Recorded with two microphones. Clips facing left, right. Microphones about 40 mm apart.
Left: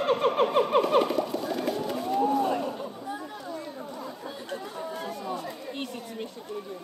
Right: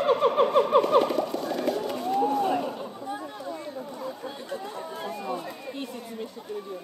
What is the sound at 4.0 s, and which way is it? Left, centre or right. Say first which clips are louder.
Chatter: right 2 dB; centre.